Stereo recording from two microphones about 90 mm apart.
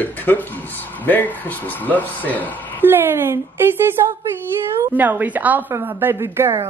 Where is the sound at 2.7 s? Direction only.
25° right (ahead or behind).